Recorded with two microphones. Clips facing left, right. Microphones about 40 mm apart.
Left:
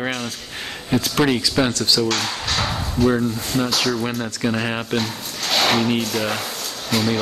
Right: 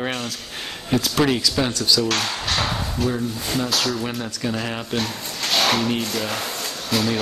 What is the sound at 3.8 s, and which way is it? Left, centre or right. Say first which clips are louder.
Speech: left 3 dB; centre.